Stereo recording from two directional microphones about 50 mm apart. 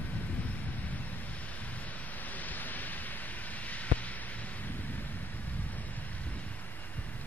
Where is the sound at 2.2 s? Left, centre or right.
Left.